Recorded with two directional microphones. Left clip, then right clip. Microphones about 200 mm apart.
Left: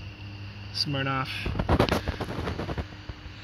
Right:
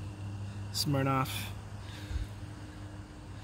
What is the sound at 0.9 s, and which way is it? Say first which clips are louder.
Speech: even; 5° right (ahead or behind).